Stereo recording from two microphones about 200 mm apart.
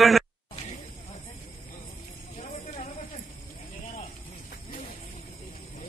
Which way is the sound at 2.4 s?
35° left (ahead or behind).